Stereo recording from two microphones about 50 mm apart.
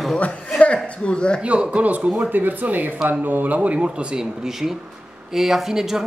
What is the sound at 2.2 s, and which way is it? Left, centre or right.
Speech, right.